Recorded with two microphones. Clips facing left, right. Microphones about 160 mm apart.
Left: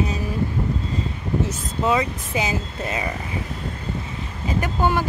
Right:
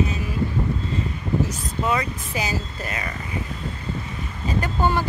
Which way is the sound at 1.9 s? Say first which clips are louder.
Left 4 dB; 20° left (ahead or behind).